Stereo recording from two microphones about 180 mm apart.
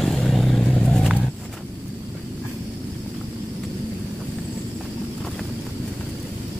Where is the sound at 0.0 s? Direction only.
Centre (ahead or behind).